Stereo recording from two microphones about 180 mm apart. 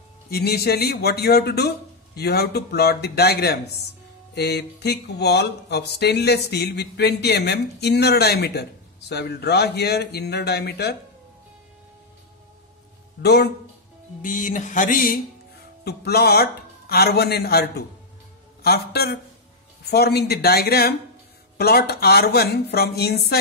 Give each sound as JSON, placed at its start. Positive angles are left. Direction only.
{"t": 0.3, "sound": "speech", "side_deg": 60}
{"t": 13.2, "sound": "speech", "side_deg": 65}
{"t": 14.2, "sound": "a sound", "side_deg": 45}
{"t": 15.8, "sound": "speech", "side_deg": 65}